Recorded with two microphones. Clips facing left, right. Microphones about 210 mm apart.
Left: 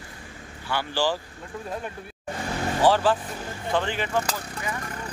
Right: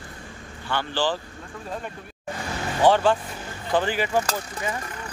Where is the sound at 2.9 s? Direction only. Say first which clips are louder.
Right 2 dB; 5° left (ahead or behind).